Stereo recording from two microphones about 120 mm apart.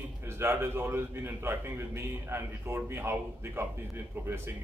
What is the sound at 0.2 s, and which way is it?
A man's voice, 20° right (ahead or behind).